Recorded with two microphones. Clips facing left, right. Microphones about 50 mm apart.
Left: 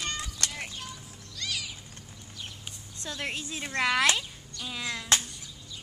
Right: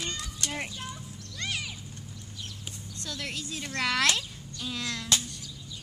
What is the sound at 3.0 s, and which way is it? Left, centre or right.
A woman's voice, left.